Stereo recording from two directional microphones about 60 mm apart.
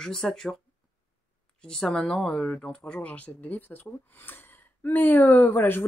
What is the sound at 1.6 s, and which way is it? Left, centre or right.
Speech, centre.